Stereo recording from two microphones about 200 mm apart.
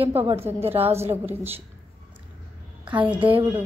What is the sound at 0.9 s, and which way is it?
Speech, 10° right (ahead or behind).